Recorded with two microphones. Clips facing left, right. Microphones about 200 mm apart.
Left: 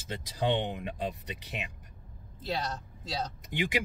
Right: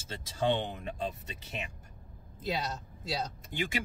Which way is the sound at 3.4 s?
20° left (ahead or behind).